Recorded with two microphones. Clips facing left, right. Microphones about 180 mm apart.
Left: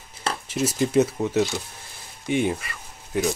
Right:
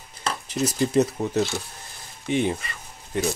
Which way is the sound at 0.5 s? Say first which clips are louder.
Even; 5° left (ahead or behind).